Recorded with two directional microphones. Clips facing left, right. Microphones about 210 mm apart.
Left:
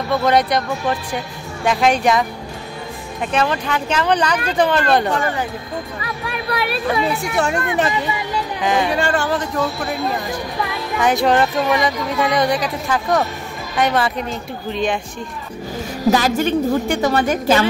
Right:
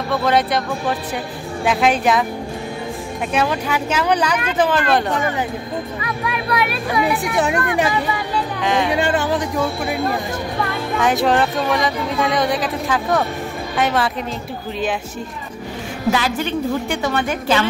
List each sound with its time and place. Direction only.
0.1 s speech: centre (ahead or behind)
3.3 s speech: 10° right (ahead or behind)
6.0 s speech: 30° left (ahead or behind)
7.1 s speech: 15° right (ahead or behind)
8.6 s speech: centre (ahead or behind)
8.9 s speech: 20° right (ahead or behind)
11.0 s speech: centre (ahead or behind)
16.1 s a woman's voice: 40° left (ahead or behind)